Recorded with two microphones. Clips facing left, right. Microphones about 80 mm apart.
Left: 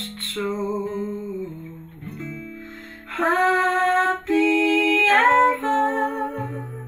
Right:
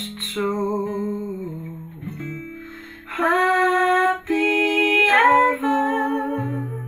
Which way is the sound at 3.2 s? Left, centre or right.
Right.